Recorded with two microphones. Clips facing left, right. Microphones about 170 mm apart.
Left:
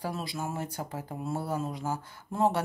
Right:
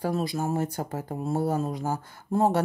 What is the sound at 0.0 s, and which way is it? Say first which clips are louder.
Speech: right 7 dB; 45° right (ahead or behind).